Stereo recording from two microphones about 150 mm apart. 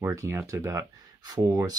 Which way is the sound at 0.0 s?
20° right (ahead or behind).